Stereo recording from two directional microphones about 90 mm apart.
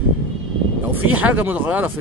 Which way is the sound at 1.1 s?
15° right (ahead or behind).